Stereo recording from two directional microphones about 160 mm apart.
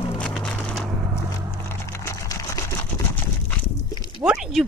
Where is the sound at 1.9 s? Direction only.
20° left (ahead or behind).